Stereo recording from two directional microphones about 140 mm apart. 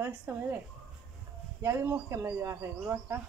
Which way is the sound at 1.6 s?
20° right (ahead or behind).